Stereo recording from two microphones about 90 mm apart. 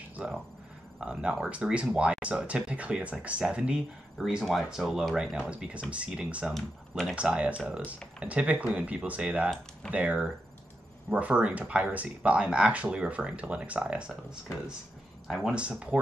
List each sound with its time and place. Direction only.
0.1 s a sound: 10° right (ahead or behind)
0.9 s speech: 10° right (ahead or behind)
6.5 s speech: centre (ahead or behind)
7.2 s speech: 15° right (ahead or behind)
15.5 s speech: 10° right (ahead or behind)